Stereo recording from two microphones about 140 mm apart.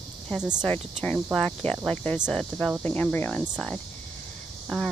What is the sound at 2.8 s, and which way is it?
Speech, 10° left (ahead or behind).